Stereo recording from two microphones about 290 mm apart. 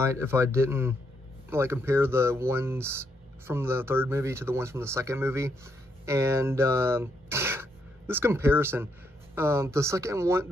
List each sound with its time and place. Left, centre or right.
0.0 s speech: centre